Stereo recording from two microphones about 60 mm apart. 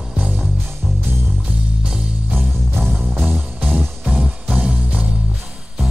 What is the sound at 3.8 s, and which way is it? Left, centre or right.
Music, centre.